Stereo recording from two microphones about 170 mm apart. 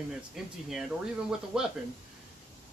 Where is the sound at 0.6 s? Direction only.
5° right (ahead or behind).